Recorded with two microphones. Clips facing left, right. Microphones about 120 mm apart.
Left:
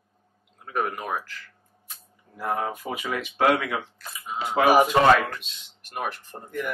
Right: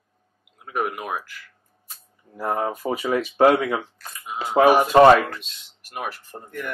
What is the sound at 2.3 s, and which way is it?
Speech, 40° right (ahead or behind).